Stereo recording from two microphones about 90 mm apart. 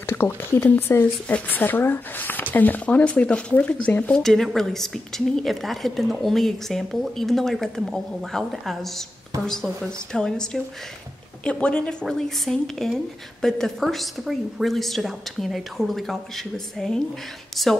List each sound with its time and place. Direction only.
0.0 s speech: 25° left (ahead or behind)
4.2 s a woman's voice: 5° left (ahead or behind)